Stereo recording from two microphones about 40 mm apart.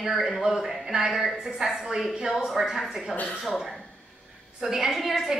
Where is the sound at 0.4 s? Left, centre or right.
Centre.